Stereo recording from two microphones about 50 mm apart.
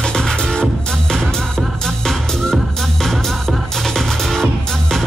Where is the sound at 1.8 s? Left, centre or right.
Centre.